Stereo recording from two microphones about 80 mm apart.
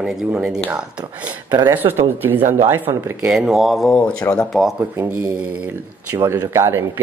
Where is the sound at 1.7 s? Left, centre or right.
Right.